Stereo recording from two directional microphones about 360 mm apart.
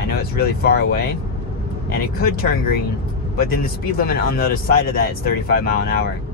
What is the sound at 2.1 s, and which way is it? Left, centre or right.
A man's voice, left.